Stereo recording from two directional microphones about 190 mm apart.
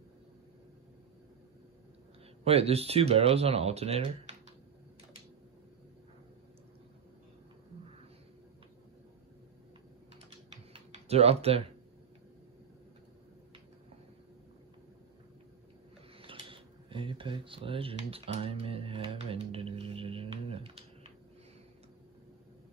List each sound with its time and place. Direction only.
2.4 s speech: 30° right (ahead or behind)
10.5 s typing: 35° right (ahead or behind)
16.2 s speech: 30° right (ahead or behind)